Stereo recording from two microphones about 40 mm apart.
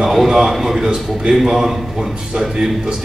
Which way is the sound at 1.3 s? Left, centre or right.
Centre.